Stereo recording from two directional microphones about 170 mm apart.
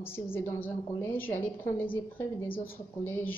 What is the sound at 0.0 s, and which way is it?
A woman's voice, 15° left (ahead or behind).